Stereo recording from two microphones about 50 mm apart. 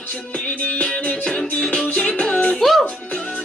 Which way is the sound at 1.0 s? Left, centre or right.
Left.